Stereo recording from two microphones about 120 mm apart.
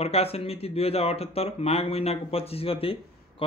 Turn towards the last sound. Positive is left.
turn(degrees=50)  # may be behind; listen again after turning